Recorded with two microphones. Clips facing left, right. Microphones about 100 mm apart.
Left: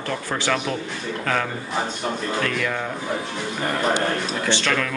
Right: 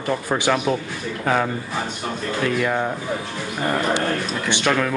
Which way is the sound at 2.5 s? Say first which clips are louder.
Right 4 dB; 25° right (ahead or behind).